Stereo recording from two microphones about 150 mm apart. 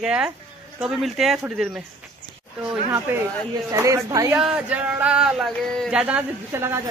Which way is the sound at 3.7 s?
25° right (ahead or behind).